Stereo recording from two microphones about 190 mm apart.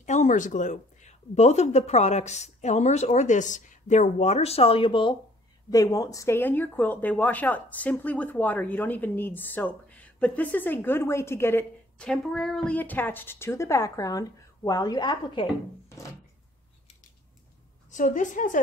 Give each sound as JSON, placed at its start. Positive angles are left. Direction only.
{"t": 0.0, "sound": "speech", "side_deg": 40}
{"t": 15.9, "sound": "drawer open or close", "side_deg": 15}
{"t": 17.8, "sound": "a woman's voice", "side_deg": 40}